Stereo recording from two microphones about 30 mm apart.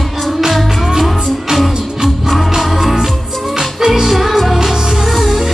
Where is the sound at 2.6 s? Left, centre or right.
Centre.